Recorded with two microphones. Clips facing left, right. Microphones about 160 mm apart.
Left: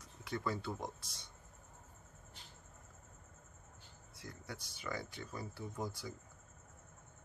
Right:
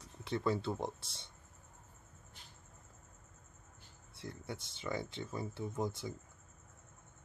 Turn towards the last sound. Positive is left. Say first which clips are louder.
# right 5 dB
turn(degrees=-25)  # may be behind; listen again after turning